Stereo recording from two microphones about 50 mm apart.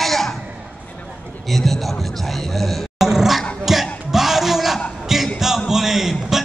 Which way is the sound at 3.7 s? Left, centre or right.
Centre.